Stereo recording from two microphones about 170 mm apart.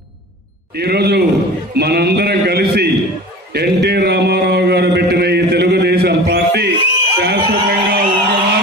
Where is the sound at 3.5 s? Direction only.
70° right (ahead or behind).